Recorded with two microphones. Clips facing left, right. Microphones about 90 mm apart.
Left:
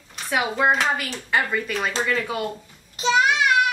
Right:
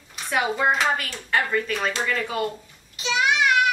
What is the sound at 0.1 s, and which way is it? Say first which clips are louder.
Speech: even; centre (ahead or behind).